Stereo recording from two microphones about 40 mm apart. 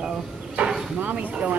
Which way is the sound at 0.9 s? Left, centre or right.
Right.